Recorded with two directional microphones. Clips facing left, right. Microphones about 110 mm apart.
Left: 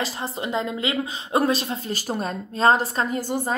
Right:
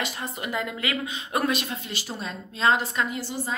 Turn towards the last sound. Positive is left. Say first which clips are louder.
# left 4 dB
turn(degrees=50)  # may be behind; listen again after turning